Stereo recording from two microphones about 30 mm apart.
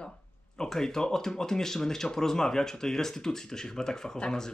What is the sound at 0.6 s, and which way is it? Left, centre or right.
Speech, centre.